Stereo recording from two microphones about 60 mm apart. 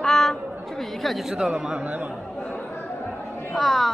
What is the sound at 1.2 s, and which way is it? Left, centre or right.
Speech, centre.